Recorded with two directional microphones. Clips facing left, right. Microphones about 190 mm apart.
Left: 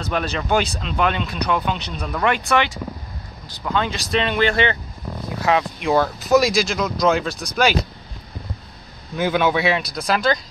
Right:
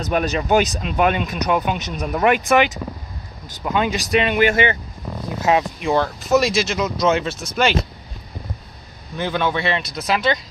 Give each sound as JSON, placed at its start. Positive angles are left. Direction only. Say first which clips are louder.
{"t": 0.0, "sound": "speech", "louder": "right 3 dB", "side_deg": -15}
{"t": 5.8, "sound": "speech", "louder": "left 1 dB", "side_deg": 0}
{"t": 9.1, "sound": "speech", "louder": "left 3 dB", "side_deg": 5}